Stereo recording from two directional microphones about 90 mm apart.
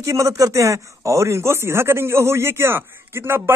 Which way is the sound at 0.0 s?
35° right (ahead or behind).